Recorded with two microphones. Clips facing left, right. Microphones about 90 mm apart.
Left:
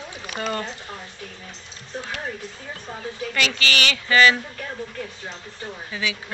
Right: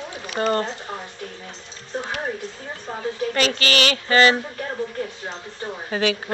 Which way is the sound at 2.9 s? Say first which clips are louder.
Right 6 dB; 40° right (ahead or behind).